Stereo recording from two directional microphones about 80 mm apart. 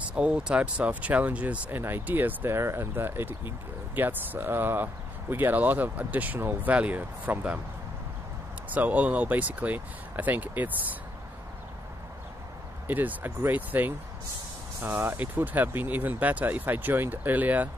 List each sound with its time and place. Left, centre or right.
0.1 s speech: centre
8.6 s speech: centre
12.8 s speech: right